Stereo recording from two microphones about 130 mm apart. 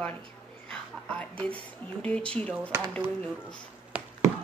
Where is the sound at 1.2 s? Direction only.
10° left (ahead or behind).